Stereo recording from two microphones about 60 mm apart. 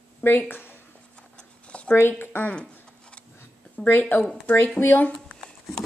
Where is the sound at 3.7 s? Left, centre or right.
Left.